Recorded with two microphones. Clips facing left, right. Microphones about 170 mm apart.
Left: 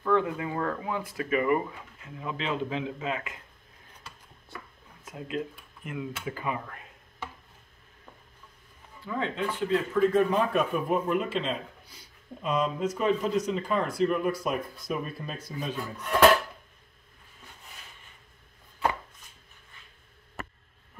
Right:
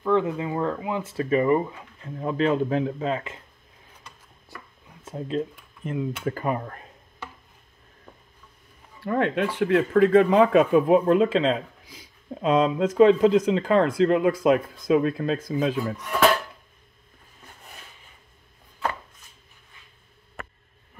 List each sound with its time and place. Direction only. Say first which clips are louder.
0.0 s speech: right 3 dB; 20° right (ahead or behind)
1.1 s speech: right 5 dB; 30° right (ahead or behind)
5.0 s speech: right 6 dB; 30° right (ahead or behind)
6.2 s speech: right 6 dB; 45° right (ahead or behind)
9.0 s speech: right 7 dB; 70° right (ahead or behind); by 15.8 s 90° right
16.0 s speech: left 3 dB; centre (ahead or behind)